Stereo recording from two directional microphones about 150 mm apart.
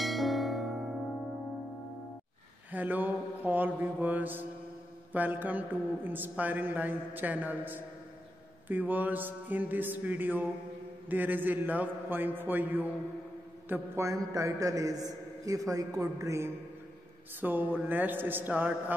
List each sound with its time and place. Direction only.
0.0 s bell: centre (ahead or behind)
2.7 s a man's voice: 10° right (ahead or behind)